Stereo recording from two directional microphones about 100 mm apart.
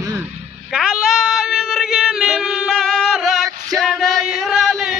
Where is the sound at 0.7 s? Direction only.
10° right (ahead or behind).